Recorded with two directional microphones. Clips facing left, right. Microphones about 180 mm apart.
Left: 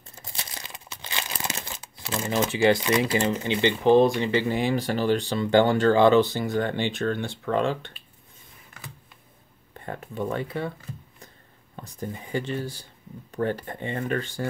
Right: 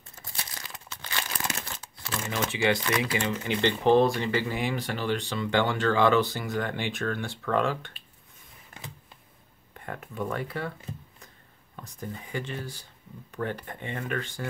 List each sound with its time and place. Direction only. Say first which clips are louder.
0.2 s crumpling: left 2 dB; 20° left (ahead or behind)
2.1 s speech: left 5 dB; 30° left (ahead or behind)
9.8 s speech: left 3 dB; 30° left (ahead or behind)
11.7 s a sound: left 5 dB; 30° left (ahead or behind)
12.3 s speech: left 7 dB; 30° left (ahead or behind)